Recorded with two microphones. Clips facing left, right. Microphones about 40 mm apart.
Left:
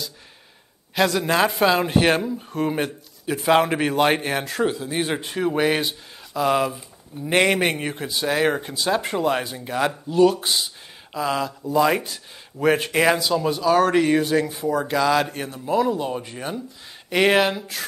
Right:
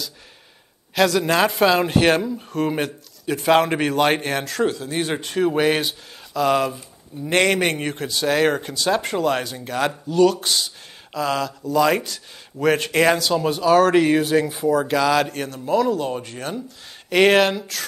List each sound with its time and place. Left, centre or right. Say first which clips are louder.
0.9 s a man's voice: right 2 dB; centre
10.0 s speech: even; left
11.1 s a man's voice: right 1 dB; centre
13.3 s a man's voice: right 2 dB; centre